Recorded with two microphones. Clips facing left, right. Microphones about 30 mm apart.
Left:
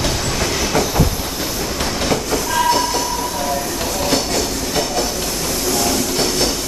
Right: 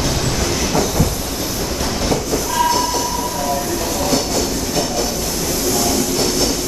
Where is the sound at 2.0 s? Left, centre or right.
Left.